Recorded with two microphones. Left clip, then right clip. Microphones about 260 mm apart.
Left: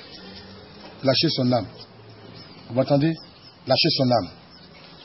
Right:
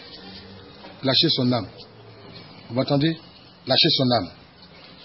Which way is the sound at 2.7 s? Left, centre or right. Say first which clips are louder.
Left 2 dB; centre.